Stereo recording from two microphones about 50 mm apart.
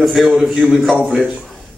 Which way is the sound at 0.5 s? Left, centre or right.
Centre.